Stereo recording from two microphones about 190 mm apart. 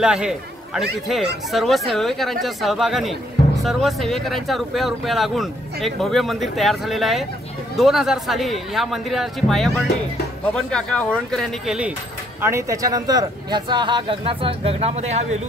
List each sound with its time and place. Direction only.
0.0 s a man's voice: 5° right (ahead or behind)
12.4 s speech: 15° right (ahead or behind); by 15.1 s 35° right (ahead or behind)